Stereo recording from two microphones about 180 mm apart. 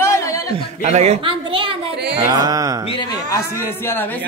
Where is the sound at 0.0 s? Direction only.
15° left (ahead or behind).